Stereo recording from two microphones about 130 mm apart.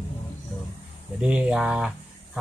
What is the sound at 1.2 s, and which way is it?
Speech, 10° right (ahead or behind).